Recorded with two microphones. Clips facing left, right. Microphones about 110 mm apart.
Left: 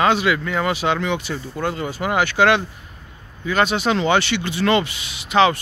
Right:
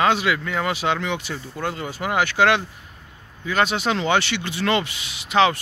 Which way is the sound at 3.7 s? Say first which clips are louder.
Left 3 dB; 20° left (ahead or behind).